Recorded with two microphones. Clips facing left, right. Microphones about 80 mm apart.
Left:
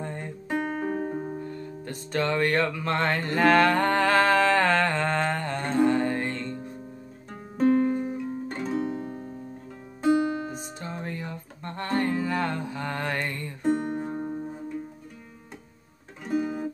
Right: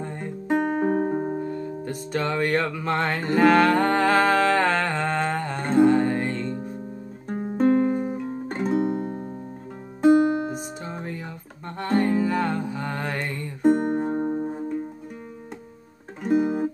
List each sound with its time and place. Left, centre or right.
0.0 s music: centre
0.7 s music: right
1.4 s music: centre
7.2 s music: right
9.0 s music: right
10.5 s music: centre
13.7 s music: right
16.3 s music: right